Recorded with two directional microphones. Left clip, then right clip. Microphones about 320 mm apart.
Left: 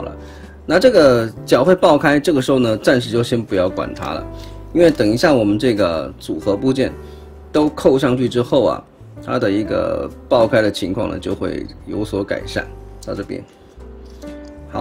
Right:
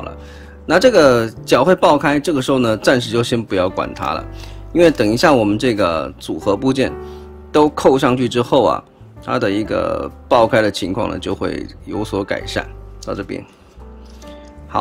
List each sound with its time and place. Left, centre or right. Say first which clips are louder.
0.7 s speech: even; centre